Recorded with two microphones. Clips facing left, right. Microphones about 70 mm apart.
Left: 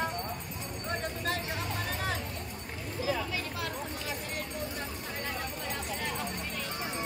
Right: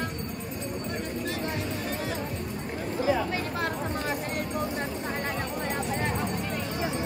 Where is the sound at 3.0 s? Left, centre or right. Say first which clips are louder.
Right 6 dB; right.